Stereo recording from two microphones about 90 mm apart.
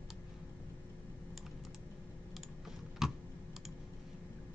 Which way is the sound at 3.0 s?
5° right (ahead or behind).